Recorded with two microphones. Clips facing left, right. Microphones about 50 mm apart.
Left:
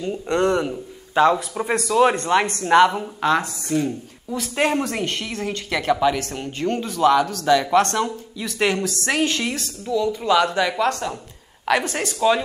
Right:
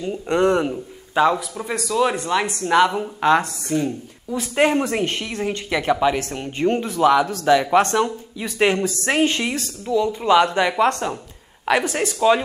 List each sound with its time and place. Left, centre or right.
0.3 s speech: centre
1.5 s speech: left
2.6 s a woman's voice: centre
3.0 s speech: centre
9.6 s a woman's voice: right